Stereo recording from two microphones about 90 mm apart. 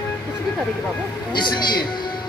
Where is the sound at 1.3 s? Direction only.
55° left (ahead or behind).